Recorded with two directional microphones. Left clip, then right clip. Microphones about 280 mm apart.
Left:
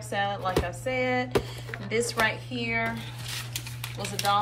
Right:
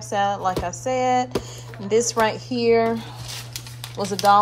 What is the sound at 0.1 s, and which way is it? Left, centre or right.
Speech, centre.